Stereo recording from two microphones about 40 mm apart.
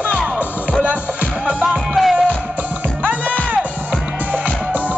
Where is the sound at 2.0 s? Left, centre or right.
Centre.